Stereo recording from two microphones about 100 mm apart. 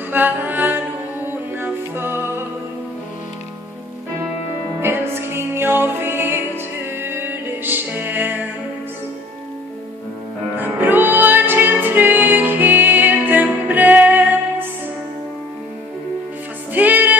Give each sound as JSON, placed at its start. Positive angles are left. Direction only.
{"t": 0.1, "sound": "music", "side_deg": -20}
{"t": 4.7, "sound": "music", "side_deg": -25}
{"t": 10.6, "sound": "music", "side_deg": -20}
{"t": 16.7, "sound": "music", "side_deg": -15}